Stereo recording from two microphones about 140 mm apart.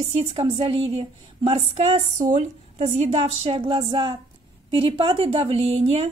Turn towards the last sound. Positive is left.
turn(degrees=-45)  # may be behind; listen again after turning